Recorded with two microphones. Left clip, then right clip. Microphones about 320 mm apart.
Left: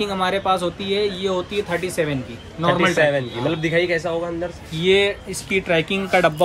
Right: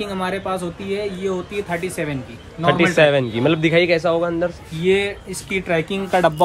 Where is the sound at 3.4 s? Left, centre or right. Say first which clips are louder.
Right 5 dB; centre.